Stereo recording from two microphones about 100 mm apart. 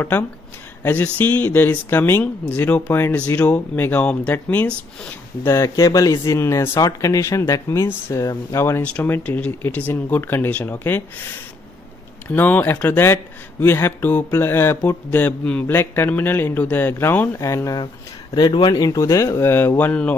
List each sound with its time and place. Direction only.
0.8 s speech: 15° left (ahead or behind)
5.4 s speech: 35° left (ahead or behind)
8.8 s speech: 15° left (ahead or behind)
12.3 s speech: 15° left (ahead or behind)
17.4 s speech: 30° left (ahead or behind)
18.3 s speech: 45° left (ahead or behind); by 20.2 s 15° left (ahead or behind)